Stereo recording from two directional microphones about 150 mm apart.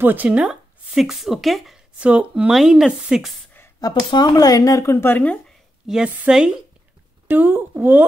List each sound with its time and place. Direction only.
0.0 s speech: 10° right (ahead or behind)
3.8 s speech: 30° left (ahead or behind); by 5.4 s 10° left (ahead or behind)
5.9 s a woman's voice: 10° right (ahead or behind)